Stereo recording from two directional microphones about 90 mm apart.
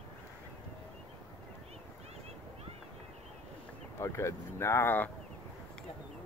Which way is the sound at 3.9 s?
35° left (ahead or behind).